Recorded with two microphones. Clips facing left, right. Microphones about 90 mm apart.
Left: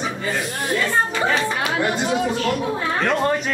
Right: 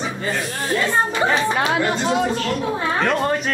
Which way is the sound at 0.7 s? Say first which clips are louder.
Right 1 dB; 20° right (ahead or behind).